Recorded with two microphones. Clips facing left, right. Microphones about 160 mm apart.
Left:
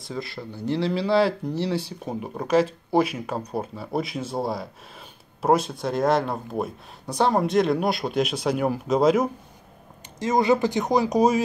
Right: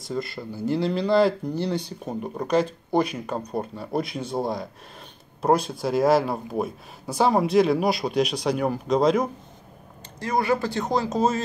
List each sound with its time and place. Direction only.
0.0 s speech: centre (ahead or behind)
10.1 s speech: 20° left (ahead or behind)